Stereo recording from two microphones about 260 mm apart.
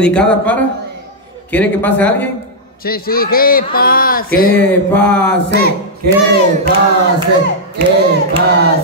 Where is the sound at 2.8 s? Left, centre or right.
Left.